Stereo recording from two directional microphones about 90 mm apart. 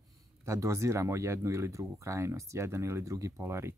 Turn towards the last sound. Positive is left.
turn(degrees=-30)  # may be behind; listen again after turning